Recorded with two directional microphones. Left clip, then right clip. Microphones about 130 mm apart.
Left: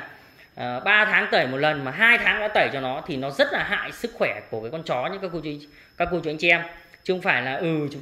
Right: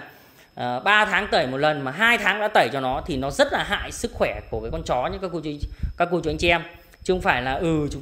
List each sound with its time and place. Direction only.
0.6 s a woman's voice: 40° right (ahead or behind)